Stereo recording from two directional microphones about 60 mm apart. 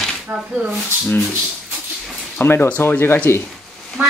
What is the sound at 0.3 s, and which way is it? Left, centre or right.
Speech, right.